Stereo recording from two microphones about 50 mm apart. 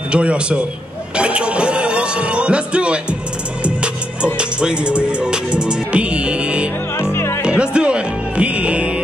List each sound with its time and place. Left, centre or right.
0.1 s a man's voice: right
1.1 s music: right
7.0 s music: left
7.4 s music: centre